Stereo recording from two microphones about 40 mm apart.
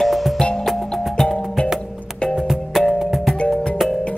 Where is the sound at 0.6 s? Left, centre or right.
Centre.